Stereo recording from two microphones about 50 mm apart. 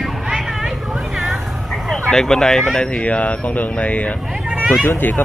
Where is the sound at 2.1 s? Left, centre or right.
Centre.